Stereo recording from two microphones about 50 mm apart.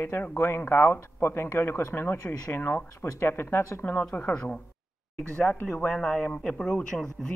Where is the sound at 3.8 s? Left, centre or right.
Left.